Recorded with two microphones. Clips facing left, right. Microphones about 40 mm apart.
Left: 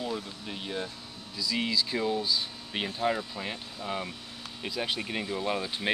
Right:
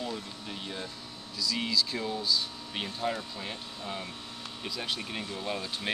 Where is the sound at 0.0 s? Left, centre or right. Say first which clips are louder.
Left 2 dB; centre.